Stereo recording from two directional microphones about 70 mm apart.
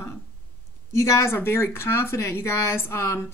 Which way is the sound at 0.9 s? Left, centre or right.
Left.